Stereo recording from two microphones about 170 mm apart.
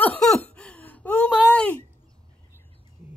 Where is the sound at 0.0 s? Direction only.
5° left (ahead or behind).